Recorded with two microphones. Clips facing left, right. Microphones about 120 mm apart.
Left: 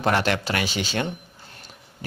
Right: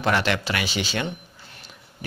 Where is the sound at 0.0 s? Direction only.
40° left (ahead or behind).